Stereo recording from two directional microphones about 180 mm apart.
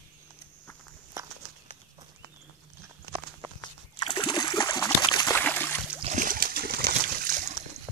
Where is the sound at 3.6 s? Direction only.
25° left (ahead or behind).